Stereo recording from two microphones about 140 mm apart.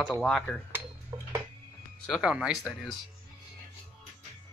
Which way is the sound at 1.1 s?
30° right (ahead or behind).